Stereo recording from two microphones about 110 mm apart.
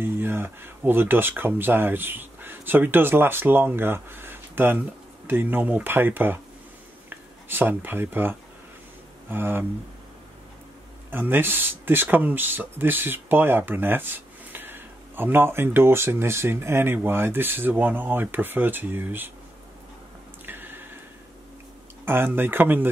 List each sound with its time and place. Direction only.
0.0 s speech: 20° right (ahead or behind)
11.1 s speech: 20° right (ahead or behind)
20.4 s a sound: 20° right (ahead or behind)
22.0 s speech: 20° right (ahead or behind)